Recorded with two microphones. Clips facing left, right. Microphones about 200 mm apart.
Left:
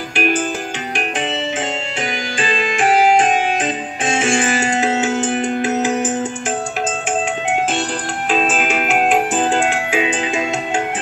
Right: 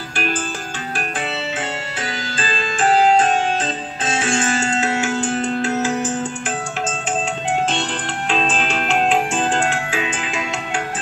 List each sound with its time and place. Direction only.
0.1 s music: 15° left (ahead or behind)
2.0 s music: 15° left (ahead or behind)
8.3 s music: 5° left (ahead or behind)